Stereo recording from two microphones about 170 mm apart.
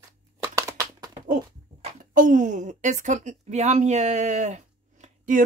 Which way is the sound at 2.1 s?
50° right (ahead or behind).